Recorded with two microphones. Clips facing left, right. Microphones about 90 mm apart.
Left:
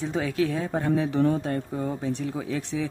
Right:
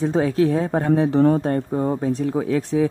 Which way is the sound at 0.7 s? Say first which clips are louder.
Right 6 dB; 50° right (ahead or behind).